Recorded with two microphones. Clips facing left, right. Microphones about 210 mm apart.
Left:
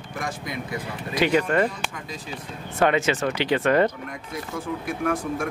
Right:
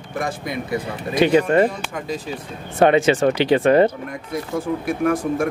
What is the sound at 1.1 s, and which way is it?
Speech, 25° right (ahead or behind).